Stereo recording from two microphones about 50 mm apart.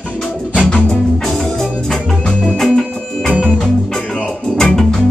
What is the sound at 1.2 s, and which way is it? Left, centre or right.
Music, centre.